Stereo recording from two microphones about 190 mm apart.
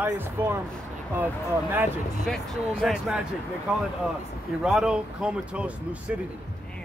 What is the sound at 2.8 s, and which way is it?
Speech, centre (ahead or behind).